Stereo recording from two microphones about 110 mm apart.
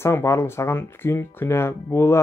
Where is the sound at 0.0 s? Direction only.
25° left (ahead or behind).